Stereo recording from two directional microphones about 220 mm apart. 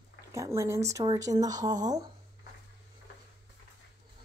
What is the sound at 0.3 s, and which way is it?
Speech, 15° right (ahead or behind).